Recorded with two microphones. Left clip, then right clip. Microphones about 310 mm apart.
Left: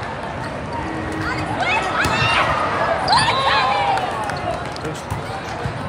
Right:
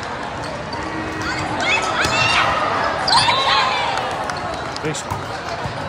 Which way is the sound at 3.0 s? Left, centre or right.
Left.